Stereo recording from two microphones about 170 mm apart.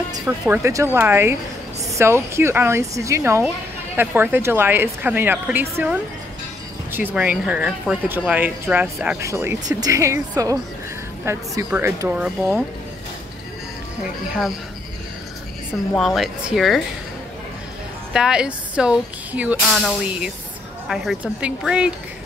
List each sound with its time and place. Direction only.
0.5 s speech: 15° right (ahead or behind)
16.0 s speech: centre (ahead or behind)
18.1 s speech: 5° right (ahead or behind)